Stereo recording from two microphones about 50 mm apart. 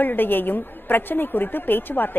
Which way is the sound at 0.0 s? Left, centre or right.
Left.